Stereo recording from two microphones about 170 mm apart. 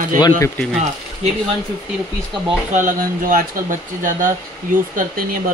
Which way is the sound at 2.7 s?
45° right (ahead or behind).